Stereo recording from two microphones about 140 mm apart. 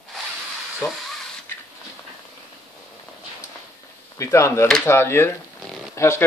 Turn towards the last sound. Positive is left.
turn(degrees=20)  # may be behind; listen again after turning